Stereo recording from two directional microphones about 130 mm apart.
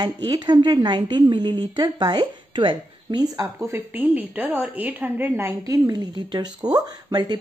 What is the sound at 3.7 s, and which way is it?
A woman's voice, 15° right (ahead or behind).